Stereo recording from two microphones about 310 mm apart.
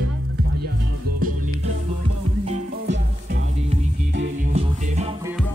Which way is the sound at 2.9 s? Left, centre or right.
Right.